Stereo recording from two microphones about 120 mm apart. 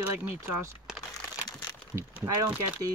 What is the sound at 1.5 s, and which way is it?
Crumpling, 35° left (ahead or behind).